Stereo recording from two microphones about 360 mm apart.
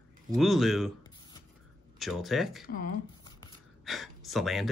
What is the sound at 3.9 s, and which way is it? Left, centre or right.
Speech, centre.